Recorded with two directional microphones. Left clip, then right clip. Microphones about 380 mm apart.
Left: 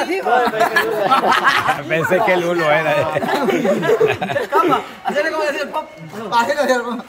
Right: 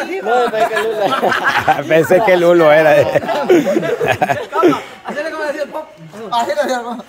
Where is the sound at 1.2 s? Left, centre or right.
Centre.